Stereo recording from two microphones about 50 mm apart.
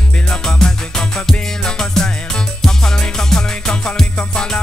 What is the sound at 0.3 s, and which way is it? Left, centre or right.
Music, centre.